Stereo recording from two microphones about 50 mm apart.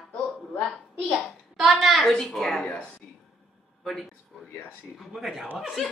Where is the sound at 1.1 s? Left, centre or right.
Centre.